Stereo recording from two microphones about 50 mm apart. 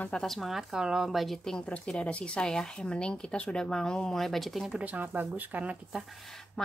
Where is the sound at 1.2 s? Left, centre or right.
Centre.